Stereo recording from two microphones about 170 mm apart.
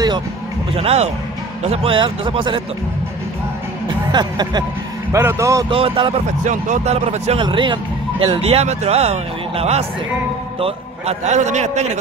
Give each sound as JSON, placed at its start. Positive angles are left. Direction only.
{"t": 0.7, "sound": "speech", "side_deg": -35}
{"t": 4.1, "sound": "speech", "side_deg": -25}
{"t": 5.7, "sound": "speech", "side_deg": -30}
{"t": 6.4, "sound": "speech", "side_deg": -45}
{"t": 7.4, "sound": "speech", "side_deg": -30}